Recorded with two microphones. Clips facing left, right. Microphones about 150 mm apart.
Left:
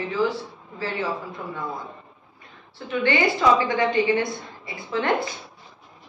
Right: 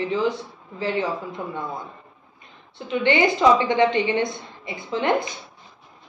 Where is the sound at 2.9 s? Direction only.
20° right (ahead or behind).